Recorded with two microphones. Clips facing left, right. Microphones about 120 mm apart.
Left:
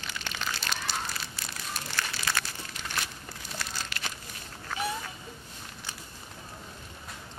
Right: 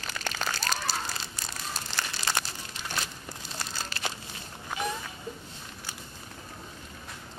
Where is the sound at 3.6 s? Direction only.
30° right (ahead or behind).